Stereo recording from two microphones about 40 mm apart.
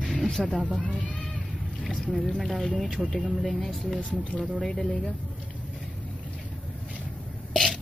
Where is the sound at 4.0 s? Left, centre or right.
Left.